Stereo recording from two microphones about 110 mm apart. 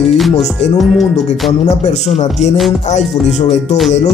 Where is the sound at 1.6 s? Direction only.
85° left.